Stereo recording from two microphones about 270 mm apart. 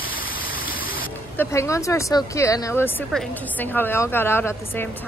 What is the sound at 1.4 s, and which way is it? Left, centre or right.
Speech, centre.